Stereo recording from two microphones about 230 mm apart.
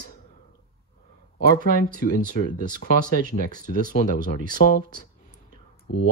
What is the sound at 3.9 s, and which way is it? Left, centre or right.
Speech, left.